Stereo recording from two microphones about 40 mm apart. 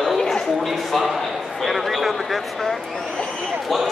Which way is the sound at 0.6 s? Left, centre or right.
Centre.